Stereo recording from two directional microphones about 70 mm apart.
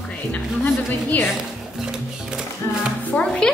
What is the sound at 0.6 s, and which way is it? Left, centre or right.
Music, left.